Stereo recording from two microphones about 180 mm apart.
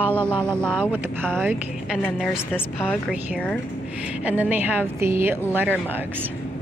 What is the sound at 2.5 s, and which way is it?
Speech, 10° left (ahead or behind).